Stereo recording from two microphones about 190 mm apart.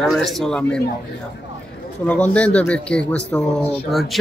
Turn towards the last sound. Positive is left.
turn(degrees=0)  # may be behind; listen again after turning